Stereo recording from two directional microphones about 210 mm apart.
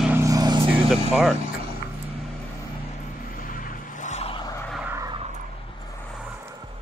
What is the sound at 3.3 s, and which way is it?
Vehicle, 40° left (ahead or behind).